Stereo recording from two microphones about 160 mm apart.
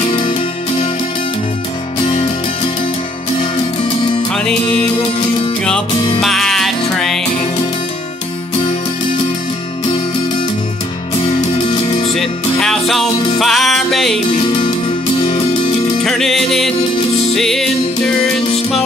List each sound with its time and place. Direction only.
0.1 s music: 30° left (ahead or behind)
6.2 s music: centre (ahead or behind)
11.2 s music: 35° left (ahead or behind)
12.1 s music: centre (ahead or behind)
14.3 s music: 35° left (ahead or behind)
16.0 s music: 5° left (ahead or behind)